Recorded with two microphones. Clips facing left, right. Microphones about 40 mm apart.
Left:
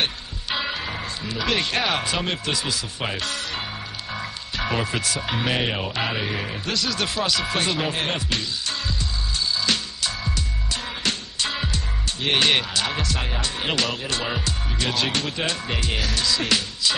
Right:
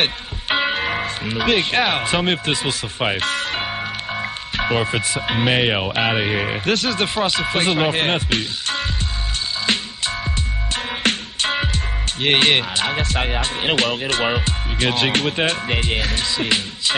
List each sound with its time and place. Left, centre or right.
0.0 s speech: right
4.1 s music: right
4.6 s speech: right
9.7 s music: right